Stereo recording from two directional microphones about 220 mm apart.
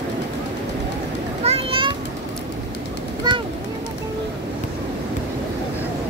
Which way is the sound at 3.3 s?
20° right (ahead or behind).